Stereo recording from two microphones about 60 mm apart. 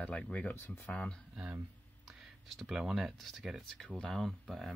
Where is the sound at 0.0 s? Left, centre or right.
Left.